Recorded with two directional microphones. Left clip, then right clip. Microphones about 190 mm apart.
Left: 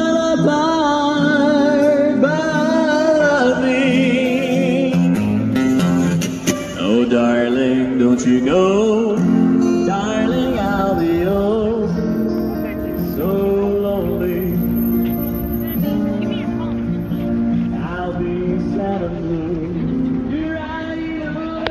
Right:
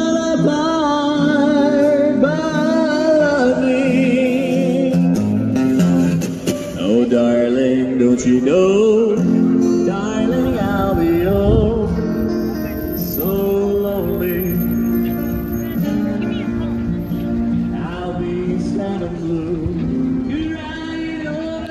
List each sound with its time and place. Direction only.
0.0 s music: 25° right (ahead or behind); by 9.9 s 5° right (ahead or behind)
10.1 s music: 25° right (ahead or behind); by 11.7 s 50° right (ahead or behind)